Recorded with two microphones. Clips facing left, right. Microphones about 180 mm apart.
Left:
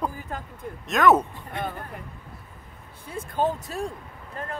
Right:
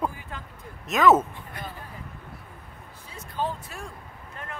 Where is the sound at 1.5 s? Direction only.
25° left (ahead or behind).